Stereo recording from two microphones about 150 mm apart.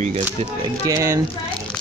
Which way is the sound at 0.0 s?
45° right (ahead or behind).